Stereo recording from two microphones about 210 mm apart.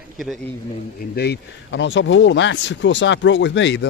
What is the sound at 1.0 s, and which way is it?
Speech, 50° left (ahead or behind).